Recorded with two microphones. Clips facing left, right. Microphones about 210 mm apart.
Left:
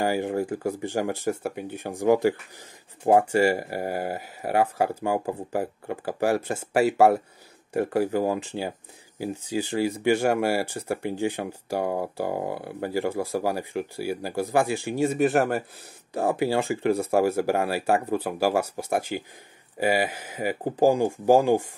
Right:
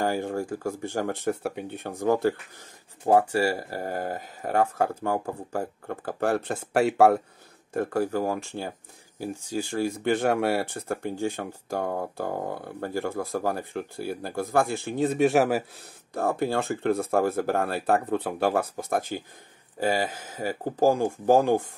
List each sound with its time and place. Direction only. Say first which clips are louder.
0.0 s speech: left 2 dB; 15° left (ahead or behind)
1.2 s speech: even; 5° left (ahead or behind)
7.7 s speech: left 2 dB; 15° left (ahead or behind)
9.5 s speech: left 2 dB; 15° left (ahead or behind); by 15.6 s centre (ahead or behind)
16.1 s speech: left 2 dB; 15° left (ahead or behind)